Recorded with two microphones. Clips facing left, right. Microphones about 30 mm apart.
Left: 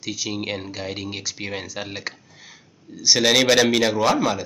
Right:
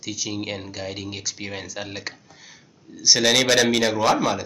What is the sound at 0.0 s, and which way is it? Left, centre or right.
Speech, centre.